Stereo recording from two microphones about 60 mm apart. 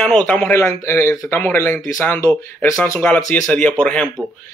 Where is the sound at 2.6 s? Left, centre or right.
Left.